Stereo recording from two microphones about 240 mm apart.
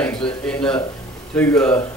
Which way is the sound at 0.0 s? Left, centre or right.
Centre.